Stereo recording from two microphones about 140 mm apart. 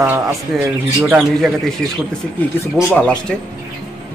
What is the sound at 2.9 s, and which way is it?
Speech, 5° left (ahead or behind).